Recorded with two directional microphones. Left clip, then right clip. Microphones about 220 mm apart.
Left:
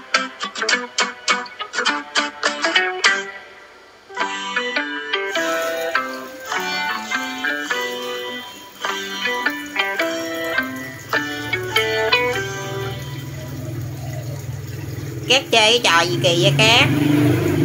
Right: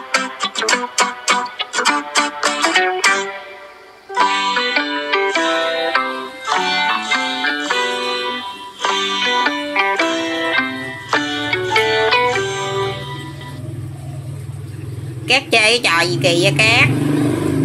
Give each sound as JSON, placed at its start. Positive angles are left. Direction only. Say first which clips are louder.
{"t": 0.1, "sound": "music", "louder": "right 2 dB", "side_deg": -60}
{"t": 15.2, "sound": "a woman's voice", "louder": "right 1 dB", "side_deg": -5}